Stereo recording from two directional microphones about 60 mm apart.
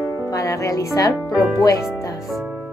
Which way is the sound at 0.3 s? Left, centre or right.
Left.